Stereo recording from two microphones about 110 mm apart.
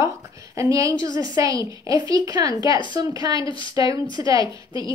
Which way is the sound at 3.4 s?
50° left (ahead or behind).